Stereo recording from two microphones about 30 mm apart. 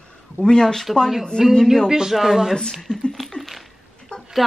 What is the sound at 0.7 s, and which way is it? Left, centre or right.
Speech, centre.